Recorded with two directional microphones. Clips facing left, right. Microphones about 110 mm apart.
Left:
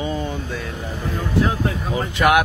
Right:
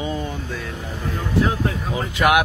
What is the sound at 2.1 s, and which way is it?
Speech, 5° right (ahead or behind).